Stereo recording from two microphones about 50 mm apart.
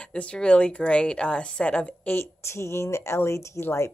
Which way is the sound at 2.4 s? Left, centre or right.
Left.